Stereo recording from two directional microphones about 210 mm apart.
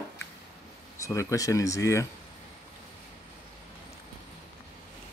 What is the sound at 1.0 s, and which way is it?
Speech, 15° left (ahead or behind).